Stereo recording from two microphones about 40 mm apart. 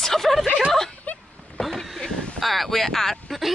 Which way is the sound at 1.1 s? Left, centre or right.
Left.